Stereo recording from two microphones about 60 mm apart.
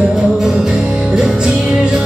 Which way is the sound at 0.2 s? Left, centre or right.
Centre.